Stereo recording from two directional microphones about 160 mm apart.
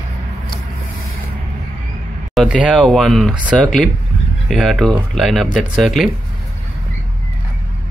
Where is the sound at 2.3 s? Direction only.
5° right (ahead or behind).